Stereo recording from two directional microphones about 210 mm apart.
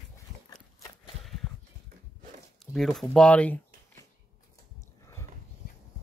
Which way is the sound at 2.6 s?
Centre (ahead or behind).